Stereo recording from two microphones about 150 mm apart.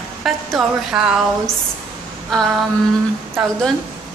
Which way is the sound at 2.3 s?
Centre (ahead or behind).